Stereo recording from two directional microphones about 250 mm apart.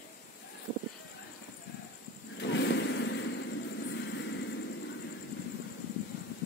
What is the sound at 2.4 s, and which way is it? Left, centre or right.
Vehicle, left.